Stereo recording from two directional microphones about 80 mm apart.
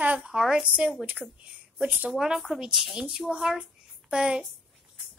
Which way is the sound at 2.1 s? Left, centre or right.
Centre.